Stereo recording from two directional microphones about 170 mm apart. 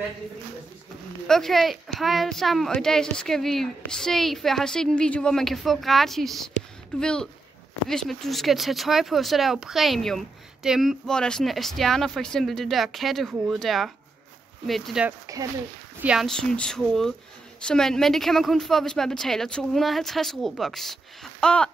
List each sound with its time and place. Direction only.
1.2 s speech: centre (ahead or behind)
15.0 s speech: 20° right (ahead or behind)
16.0 s speech: 5° right (ahead or behind)